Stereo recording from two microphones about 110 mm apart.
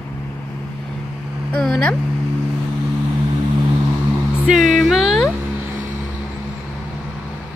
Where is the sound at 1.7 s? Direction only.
15° left (ahead or behind).